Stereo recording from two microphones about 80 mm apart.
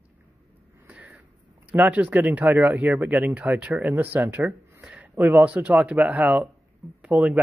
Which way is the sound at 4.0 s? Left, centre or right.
Right.